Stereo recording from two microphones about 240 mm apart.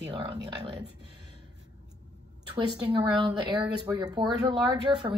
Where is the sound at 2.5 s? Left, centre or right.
Centre.